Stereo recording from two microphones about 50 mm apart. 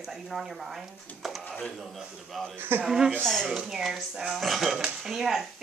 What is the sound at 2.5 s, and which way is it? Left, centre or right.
Speech, right.